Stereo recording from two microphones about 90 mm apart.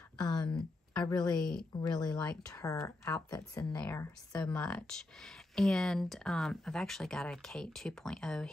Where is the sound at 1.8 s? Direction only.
50° left (ahead or behind).